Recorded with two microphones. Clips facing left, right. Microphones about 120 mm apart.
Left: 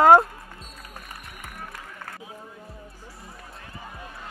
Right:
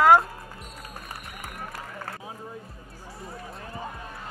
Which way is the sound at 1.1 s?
35° right (ahead or behind).